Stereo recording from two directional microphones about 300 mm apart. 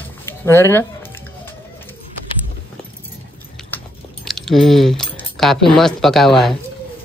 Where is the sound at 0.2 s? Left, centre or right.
Centre.